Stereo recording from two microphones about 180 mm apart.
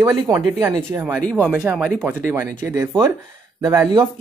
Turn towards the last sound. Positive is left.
turn(degrees=-15)  # may be behind; listen again after turning